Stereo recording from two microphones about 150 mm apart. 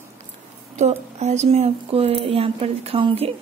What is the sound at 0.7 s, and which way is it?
A woman's voice, 50° right (ahead or behind).